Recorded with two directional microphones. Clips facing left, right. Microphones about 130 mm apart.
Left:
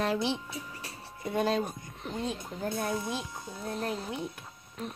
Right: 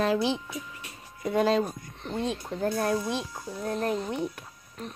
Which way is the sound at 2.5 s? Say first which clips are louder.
Right 7 dB; 70° right (ahead or behind).